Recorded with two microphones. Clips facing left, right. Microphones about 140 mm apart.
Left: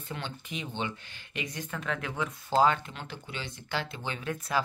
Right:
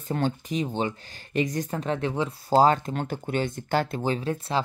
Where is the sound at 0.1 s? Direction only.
40° right (ahead or behind).